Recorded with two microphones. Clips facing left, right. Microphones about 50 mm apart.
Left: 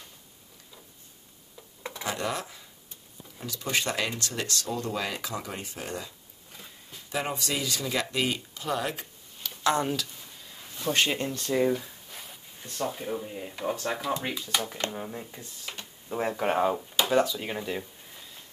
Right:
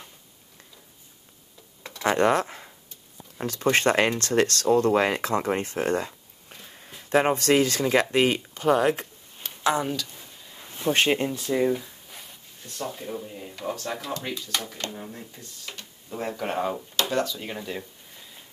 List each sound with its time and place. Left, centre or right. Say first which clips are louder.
1.8 s a sound: left 3 dB; centre
2.0 s speech: right 11 dB; right
9.8 s speech: right 1 dB; centre
10.7 s speech: right 4 dB; right
11.2 s a sound: right 2 dB; centre
12.6 s speech: left 2 dB; centre
14.6 s speech: left 2 dB; left
14.9 s speech: left 2 dB; centre